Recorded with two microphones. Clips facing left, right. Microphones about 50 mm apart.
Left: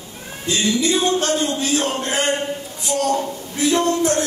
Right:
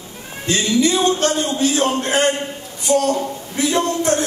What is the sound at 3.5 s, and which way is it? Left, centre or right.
Speech, right.